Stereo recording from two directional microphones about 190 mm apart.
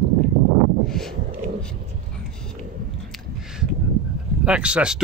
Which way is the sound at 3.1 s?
Centre (ahead or behind).